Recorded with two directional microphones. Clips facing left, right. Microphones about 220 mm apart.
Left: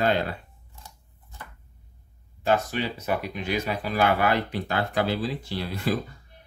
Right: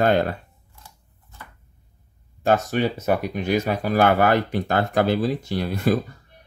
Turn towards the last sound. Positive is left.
turn(degrees=-45)  # may be behind; listen again after turning